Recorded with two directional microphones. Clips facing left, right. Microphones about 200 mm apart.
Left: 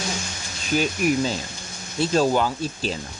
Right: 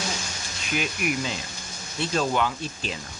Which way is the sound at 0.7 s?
35° left (ahead or behind).